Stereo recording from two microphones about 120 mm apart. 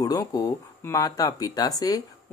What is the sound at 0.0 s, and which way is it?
Speech, 30° left (ahead or behind).